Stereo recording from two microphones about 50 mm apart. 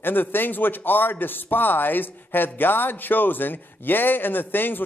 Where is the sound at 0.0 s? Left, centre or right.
Left.